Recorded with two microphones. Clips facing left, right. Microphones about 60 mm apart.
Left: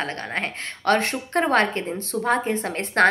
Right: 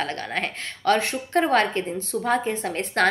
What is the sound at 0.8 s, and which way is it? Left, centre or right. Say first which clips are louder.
A woman's voice: left 1 dB; left.